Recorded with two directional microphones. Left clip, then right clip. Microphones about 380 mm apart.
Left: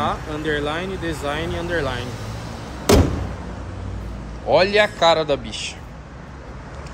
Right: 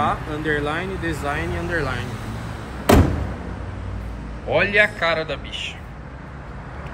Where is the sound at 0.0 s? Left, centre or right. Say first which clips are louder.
Right 1 dB; centre.